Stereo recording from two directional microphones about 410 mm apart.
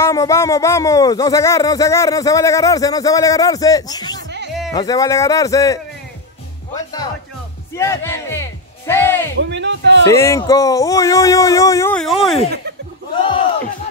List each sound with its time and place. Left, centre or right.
0.0 s speech: centre
7.7 s speech: centre
9.4 s a man's voice: right
10.0 s speech: centre
13.1 s a sound: centre